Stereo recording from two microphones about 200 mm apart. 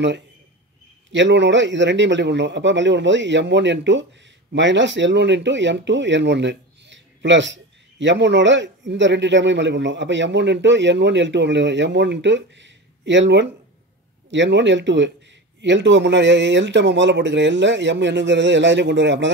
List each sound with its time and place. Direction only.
1.1 s speech: 65° right (ahead or behind)